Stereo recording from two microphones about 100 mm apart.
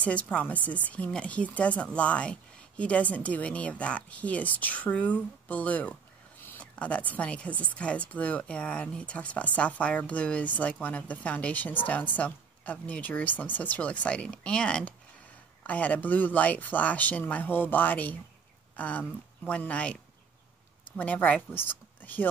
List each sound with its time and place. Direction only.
0.0 s a woman's voice: 15° left (ahead or behind)